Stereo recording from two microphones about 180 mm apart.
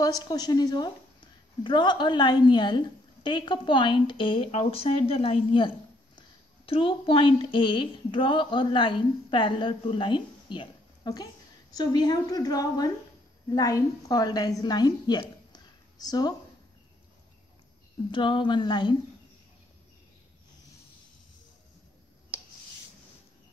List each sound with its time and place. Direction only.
0.0 s a woman's voice: 20° left (ahead or behind)
18.1 s a woman's voice: 25° left (ahead or behind)